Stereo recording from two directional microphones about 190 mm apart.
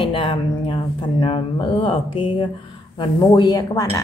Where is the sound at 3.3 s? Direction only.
20° left (ahead or behind).